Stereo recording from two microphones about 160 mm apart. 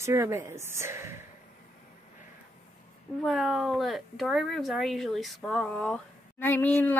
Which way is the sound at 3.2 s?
Centre (ahead or behind).